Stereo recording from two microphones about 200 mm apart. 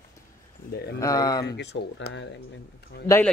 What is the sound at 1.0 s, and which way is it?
Speech, 15° left (ahead or behind).